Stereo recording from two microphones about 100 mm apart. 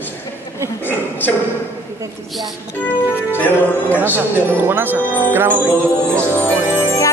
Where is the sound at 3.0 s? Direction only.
20° left (ahead or behind).